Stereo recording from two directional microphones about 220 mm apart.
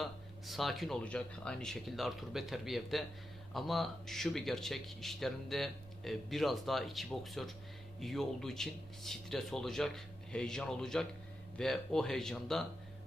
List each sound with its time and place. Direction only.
0.0 s speech: centre (ahead or behind)